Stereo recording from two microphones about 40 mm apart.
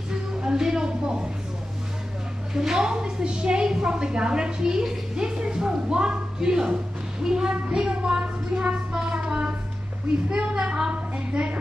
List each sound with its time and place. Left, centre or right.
0.1 s music: centre
2.5 s a woman's voice: centre; by 11.5 s right